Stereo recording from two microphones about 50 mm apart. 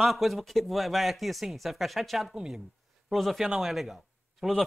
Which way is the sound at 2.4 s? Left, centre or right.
Centre.